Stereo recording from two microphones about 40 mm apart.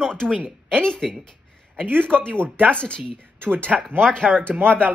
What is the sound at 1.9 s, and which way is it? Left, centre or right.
Speech, right.